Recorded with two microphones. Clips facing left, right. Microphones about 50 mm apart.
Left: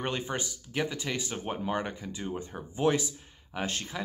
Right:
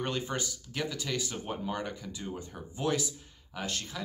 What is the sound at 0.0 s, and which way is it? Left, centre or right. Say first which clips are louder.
Speech: left 1 dB; left.